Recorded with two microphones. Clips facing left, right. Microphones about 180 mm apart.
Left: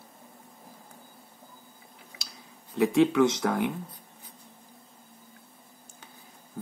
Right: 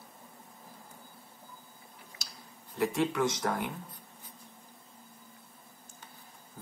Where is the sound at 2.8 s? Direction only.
70° left (ahead or behind).